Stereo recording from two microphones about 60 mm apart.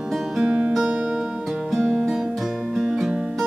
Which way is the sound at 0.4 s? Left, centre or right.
Centre.